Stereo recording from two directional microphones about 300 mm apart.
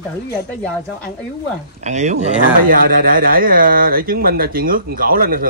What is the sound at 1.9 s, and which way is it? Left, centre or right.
Speech, right.